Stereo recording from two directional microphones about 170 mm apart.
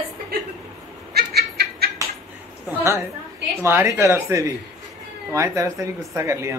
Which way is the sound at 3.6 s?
15° right (ahead or behind).